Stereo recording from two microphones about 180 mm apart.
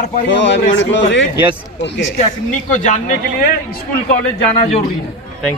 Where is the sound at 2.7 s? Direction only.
45° left (ahead or behind).